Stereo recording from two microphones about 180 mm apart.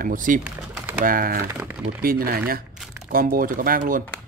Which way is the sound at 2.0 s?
55° right (ahead or behind).